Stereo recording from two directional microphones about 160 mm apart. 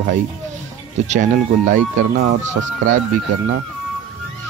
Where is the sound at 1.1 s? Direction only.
50° right (ahead or behind).